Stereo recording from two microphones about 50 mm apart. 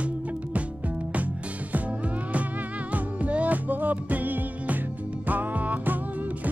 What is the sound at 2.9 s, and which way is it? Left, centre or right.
Music, right.